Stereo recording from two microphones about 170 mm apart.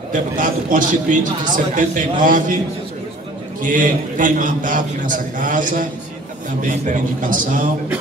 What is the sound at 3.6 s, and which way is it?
A man's voice, 50° right (ahead or behind).